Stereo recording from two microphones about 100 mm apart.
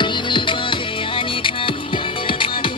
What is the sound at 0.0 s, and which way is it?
Music, 55° left (ahead or behind).